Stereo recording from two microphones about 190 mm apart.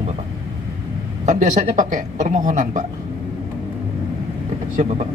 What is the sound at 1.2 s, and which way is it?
A man's voice, 40° right (ahead or behind).